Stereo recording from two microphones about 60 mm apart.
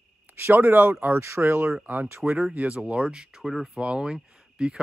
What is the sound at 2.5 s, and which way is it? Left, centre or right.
Speech, centre.